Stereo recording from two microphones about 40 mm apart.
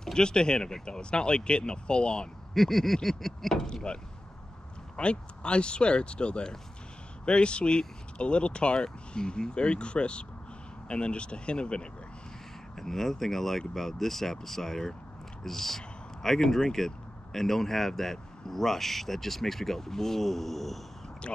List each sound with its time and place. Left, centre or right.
0.0 s speech: centre
2.5 s a sound: centre
3.6 s speech: left
12.7 s speech: centre